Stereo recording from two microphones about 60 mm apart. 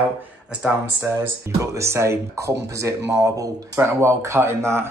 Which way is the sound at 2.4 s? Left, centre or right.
Right.